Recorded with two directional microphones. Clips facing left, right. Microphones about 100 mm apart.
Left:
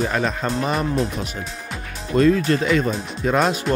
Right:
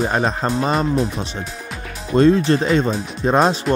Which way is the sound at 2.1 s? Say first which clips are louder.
Right 3 dB; 30° right (ahead or behind).